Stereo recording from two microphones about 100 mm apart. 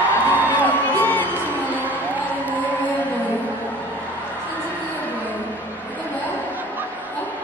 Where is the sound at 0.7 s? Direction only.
15° left (ahead or behind).